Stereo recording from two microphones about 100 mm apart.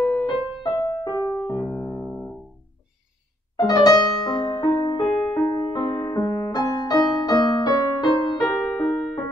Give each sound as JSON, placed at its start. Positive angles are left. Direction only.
{"t": 0.0, "sound": "music", "side_deg": 15}
{"t": 1.0, "sound": "music", "side_deg": 40}
{"t": 1.7, "sound": "keyboard", "side_deg": 20}
{"t": 3.5, "sound": "music", "side_deg": 40}
{"t": 5.0, "sound": "music", "side_deg": 10}
{"t": 5.5, "sound": "music", "side_deg": 40}
{"t": 6.1, "sound": "music", "side_deg": 40}
{"t": 8.5, "sound": "music", "side_deg": 0}
{"t": 8.8, "sound": "music", "side_deg": 15}